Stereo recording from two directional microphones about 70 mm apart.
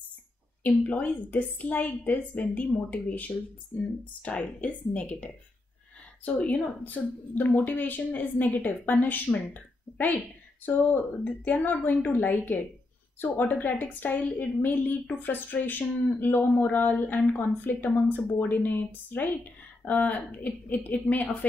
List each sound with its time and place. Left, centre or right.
0.8 s speech: centre